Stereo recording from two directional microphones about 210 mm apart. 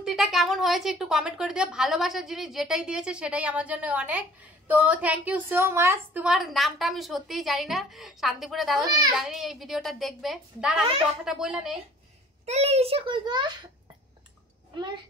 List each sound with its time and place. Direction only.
0.0 s a woman's voice: centre (ahead or behind)
12.4 s a child's voice: 30° right (ahead or behind)